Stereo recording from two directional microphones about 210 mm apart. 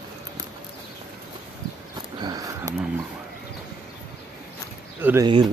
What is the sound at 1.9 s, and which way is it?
Wild animals, 20° right (ahead or behind).